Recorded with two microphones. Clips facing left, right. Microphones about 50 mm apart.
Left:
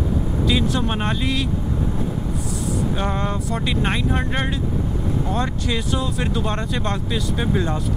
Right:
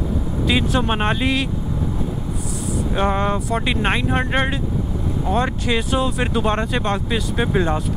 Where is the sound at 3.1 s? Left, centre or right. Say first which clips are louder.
Right 4 dB; right.